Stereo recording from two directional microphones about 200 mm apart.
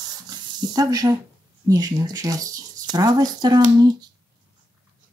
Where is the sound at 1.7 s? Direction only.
20° right (ahead or behind).